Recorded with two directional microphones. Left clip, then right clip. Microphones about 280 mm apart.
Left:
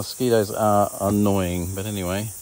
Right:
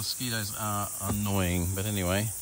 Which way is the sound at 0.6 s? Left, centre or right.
Left.